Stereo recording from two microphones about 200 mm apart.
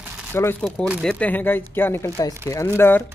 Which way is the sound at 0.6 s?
5° right (ahead or behind).